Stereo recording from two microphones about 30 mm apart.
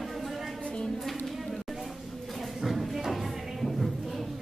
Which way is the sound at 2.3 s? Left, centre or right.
Centre.